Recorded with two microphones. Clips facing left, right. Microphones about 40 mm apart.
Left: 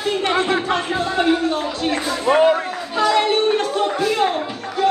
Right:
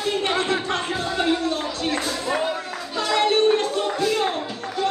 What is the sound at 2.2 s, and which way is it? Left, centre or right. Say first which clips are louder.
Speech: left 12 dB; left.